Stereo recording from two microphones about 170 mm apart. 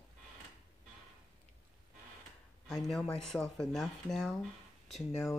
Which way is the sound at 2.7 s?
Centre (ahead or behind).